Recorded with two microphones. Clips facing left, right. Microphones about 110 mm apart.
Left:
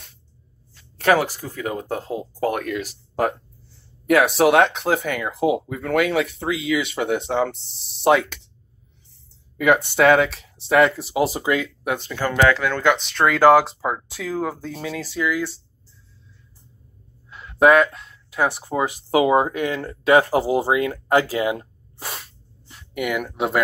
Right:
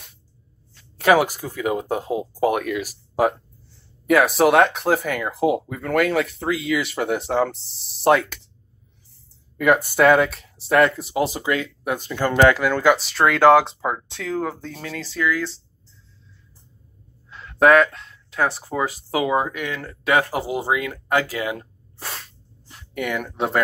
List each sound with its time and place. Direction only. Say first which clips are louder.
0.9 s speech: right 2 dB; 15° right (ahead or behind)
9.6 s speech: even; centre (ahead or behind)
11.3 s speech: left 2 dB; 15° left (ahead or behind)
11.6 s speech: left 1 dB; centre (ahead or behind)
12.1 s speech: right 3 dB; 20° right (ahead or behind); by 15.6 s 10° left (ahead or behind)
17.3 s speech: even; 10° left (ahead or behind)